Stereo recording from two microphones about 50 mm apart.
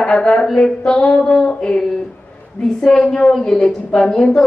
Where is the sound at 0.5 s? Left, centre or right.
Centre.